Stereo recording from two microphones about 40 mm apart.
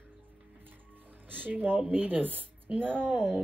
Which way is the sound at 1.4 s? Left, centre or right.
Right.